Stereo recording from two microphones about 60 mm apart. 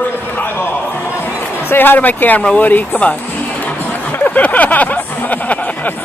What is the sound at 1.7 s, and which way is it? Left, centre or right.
Speech, left.